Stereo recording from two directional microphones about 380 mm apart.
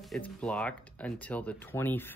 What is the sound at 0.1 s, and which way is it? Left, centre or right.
Speech, centre.